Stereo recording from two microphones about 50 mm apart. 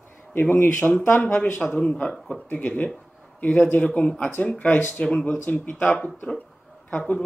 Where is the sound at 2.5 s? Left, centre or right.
Left.